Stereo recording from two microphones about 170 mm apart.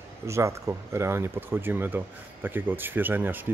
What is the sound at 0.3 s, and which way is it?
A man's voice, 15° right (ahead or behind).